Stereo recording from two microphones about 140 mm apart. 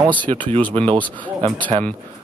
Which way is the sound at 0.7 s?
35° right (ahead or behind).